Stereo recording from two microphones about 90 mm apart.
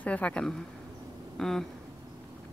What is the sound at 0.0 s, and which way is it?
Speech, 15° left (ahead or behind).